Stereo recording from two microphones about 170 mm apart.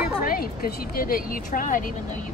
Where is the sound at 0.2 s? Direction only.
55° left (ahead or behind).